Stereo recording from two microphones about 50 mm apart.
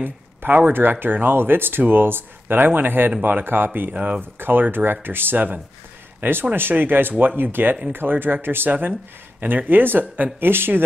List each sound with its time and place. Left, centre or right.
0.0 s speech: right
3.9 s speech: right
4.2 s speech: right